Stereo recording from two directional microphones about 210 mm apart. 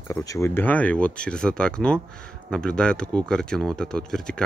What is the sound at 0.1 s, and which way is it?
Speech, 15° left (ahead or behind).